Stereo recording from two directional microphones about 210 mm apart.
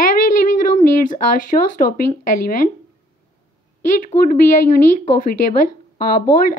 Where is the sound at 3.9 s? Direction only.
40° left (ahead or behind).